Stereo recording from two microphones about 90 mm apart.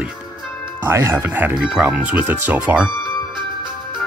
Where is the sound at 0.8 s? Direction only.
30° right (ahead or behind).